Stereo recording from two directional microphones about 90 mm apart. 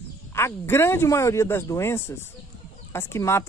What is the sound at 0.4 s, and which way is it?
Speech, 25° left (ahead or behind).